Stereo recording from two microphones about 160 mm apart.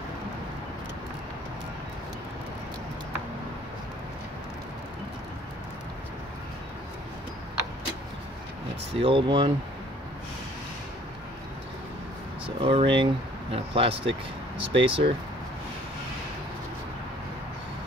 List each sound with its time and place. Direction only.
8.9 s speech: 35° right (ahead or behind)
12.4 s speech: 35° right (ahead or behind)